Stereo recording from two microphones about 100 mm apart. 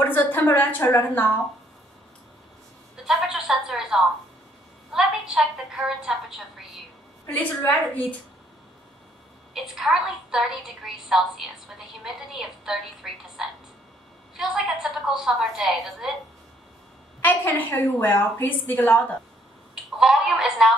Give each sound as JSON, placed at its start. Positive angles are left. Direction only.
{"t": 0.0, "sound": "a sound", "side_deg": 20}
{"t": 0.4, "sound": "a woman's voice", "side_deg": 25}
{"t": 3.1, "sound": "a woman's voice", "side_deg": -5}
{"t": 7.2, "sound": "a woman's voice", "side_deg": 15}
{"t": 9.5, "sound": "a woman's voice", "side_deg": -5}
{"t": 17.2, "sound": "a woman's voice", "side_deg": 20}
{"t": 19.7, "sound": "a woman's voice", "side_deg": -5}